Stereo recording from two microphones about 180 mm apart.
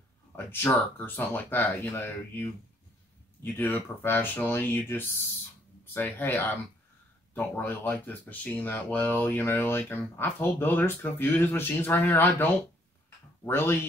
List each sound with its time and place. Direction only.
0.5 s speech: 10° left (ahead or behind)
3.4 s speech: 10° left (ahead or behind)
13.5 s speech: 10° left (ahead or behind)